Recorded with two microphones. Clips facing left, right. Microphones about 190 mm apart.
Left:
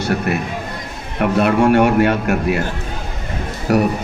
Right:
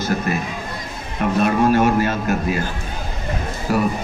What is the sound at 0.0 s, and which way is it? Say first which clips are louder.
A man's voice: left 2 dB; 65° left (ahead or behind).